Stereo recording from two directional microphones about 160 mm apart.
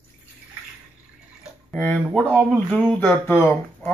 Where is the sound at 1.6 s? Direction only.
10° left (ahead or behind).